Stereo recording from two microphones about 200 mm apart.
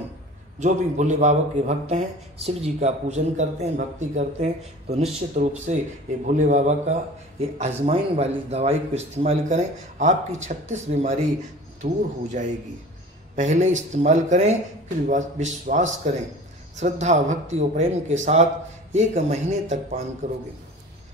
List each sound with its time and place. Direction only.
0.6 s a man's voice: 35° right (ahead or behind)